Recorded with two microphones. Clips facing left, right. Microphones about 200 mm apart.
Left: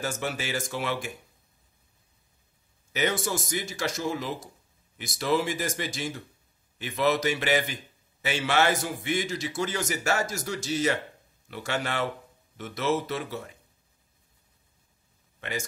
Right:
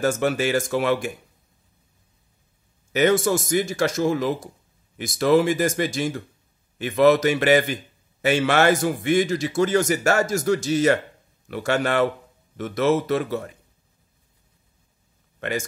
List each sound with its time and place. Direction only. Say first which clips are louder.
0.0 s a man's voice: right 10 dB; 50° right (ahead or behind)
2.9 s a man's voice: right 9 dB; 50° right (ahead or behind)